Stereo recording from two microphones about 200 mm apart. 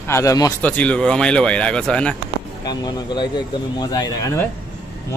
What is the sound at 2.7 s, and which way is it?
Speech, 20° left (ahead or behind).